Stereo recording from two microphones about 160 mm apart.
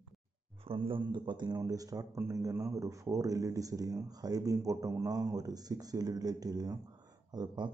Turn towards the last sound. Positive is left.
turn(degrees=-25)  # may be behind; listen again after turning